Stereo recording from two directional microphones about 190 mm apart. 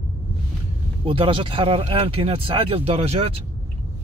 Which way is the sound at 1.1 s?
30° right (ahead or behind).